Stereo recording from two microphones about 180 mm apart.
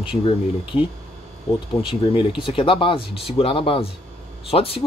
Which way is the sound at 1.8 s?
30° left (ahead or behind).